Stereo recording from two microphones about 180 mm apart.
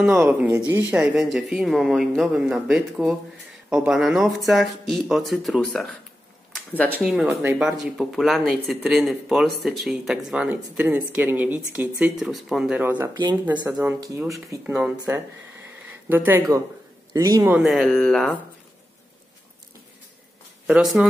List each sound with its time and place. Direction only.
0.0 s speech: 10° right (ahead or behind); by 5.9 s 5° left (ahead or behind)
6.5 s a sound: 10° left (ahead or behind)
6.9 s speech: 5° right (ahead or behind)
13.1 s a man's voice: 25° right (ahead or behind)
14.6 s a man's voice: 5° right (ahead or behind)
17.6 s speech: centre (ahead or behind)
20.6 s speech: 5° right (ahead or behind)